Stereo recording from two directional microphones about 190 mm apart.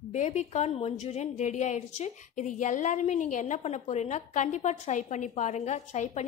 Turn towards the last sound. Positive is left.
turn(degrees=35)  # may be behind; listen again after turning